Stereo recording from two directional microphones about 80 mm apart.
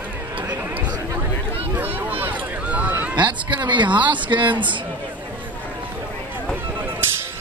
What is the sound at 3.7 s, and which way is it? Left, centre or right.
A woman's voice, right.